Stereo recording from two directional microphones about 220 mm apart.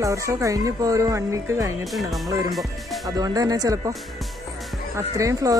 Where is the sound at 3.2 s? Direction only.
15° right (ahead or behind).